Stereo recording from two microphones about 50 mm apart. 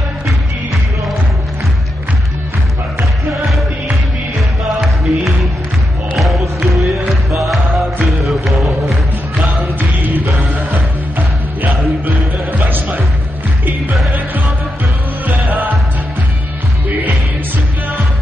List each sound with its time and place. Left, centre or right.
4.7 s music: centre
9.8 s music: right
12.5 s music: right
15.2 s music: right